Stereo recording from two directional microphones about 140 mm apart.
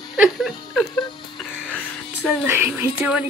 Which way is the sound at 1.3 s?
5° left (ahead or behind).